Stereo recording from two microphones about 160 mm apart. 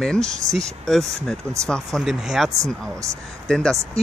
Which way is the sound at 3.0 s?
20° right (ahead or behind).